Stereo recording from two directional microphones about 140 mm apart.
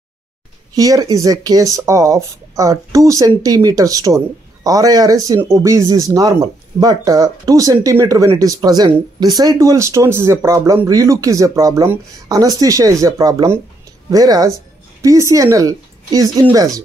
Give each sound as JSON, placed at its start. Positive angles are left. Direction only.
{"t": 0.7, "sound": "a woman's voice", "side_deg": -25}